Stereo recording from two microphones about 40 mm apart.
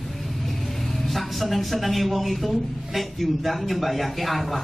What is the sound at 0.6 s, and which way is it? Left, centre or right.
Speech, centre.